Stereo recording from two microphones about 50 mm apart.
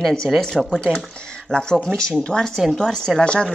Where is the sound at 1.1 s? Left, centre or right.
Centre.